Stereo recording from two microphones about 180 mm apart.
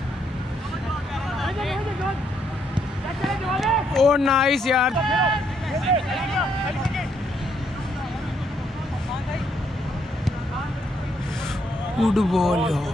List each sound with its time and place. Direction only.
1.4 s vehicle: centre (ahead or behind)
3.3 s speech: centre (ahead or behind)
12.0 s speech: centre (ahead or behind)